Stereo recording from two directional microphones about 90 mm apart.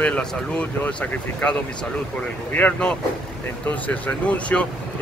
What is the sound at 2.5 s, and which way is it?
Speech, 15° left (ahead or behind).